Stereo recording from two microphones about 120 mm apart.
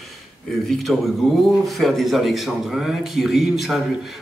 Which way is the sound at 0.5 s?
Centre (ahead or behind).